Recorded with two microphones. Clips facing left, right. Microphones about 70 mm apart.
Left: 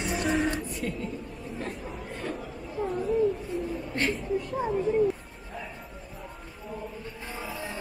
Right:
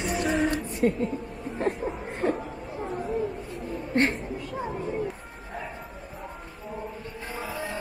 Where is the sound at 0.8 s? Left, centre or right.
Right.